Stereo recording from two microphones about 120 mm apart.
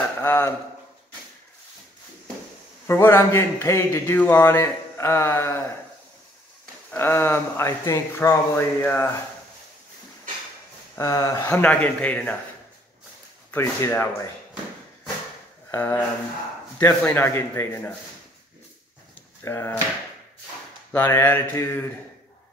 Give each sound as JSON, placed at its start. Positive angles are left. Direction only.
{"t": 0.2, "sound": "speech", "side_deg": 20}
{"t": 2.9, "sound": "speech", "side_deg": 20}
{"t": 6.9, "sound": "speech", "side_deg": 20}
{"t": 11.0, "sound": "a man's voice", "side_deg": 30}
{"t": 13.5, "sound": "speech", "side_deg": 20}
{"t": 15.7, "sound": "speech", "side_deg": 20}
{"t": 19.4, "sound": "speech", "side_deg": 20}
{"t": 20.9, "sound": "a man's voice", "side_deg": 25}